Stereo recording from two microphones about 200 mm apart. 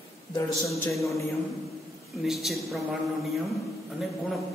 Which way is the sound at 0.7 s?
15° left (ahead or behind).